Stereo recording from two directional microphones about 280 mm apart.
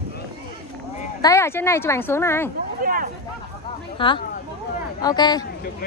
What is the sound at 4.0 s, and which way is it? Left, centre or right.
Speech, centre.